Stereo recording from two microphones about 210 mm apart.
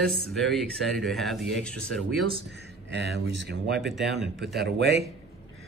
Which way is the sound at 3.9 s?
Centre (ahead or behind).